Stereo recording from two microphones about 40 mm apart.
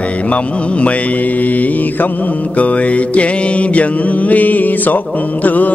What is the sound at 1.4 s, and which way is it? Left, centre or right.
Mantra, left.